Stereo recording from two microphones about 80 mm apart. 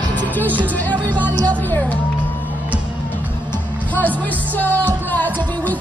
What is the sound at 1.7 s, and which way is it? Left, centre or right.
Speech, centre.